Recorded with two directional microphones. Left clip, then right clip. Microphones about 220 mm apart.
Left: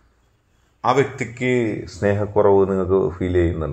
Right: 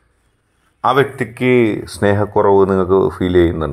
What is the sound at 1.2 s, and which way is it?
Speech, 30° right (ahead or behind).